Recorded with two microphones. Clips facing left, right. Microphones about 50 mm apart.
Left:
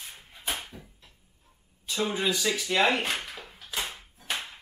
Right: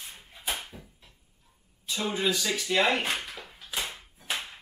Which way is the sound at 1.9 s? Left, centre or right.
Centre.